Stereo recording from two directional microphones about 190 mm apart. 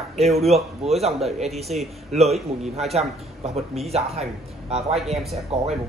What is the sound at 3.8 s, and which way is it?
Speech, 35° right (ahead or behind).